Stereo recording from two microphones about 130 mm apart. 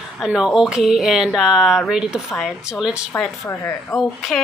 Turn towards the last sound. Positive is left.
turn(degrees=0)  # may be behind; listen again after turning